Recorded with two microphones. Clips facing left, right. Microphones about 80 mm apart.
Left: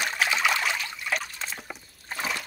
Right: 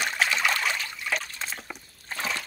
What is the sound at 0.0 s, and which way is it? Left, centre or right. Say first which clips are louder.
Trickle: even; centre.